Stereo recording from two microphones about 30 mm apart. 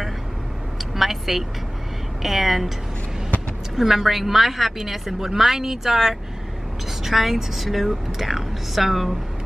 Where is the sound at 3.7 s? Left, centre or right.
Centre.